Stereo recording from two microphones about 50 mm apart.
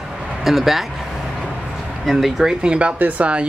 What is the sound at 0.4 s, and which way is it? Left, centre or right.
Speech, centre.